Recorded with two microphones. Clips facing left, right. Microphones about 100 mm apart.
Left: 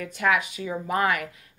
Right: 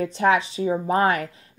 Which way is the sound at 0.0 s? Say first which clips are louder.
Right 5 dB; 30° right (ahead or behind).